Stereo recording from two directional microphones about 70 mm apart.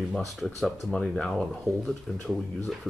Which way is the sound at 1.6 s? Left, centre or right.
Centre.